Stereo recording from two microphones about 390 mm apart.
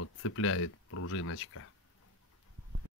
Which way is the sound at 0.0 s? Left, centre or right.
Left.